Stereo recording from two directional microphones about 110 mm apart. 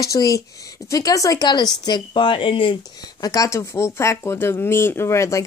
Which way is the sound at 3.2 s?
30° left (ahead or behind).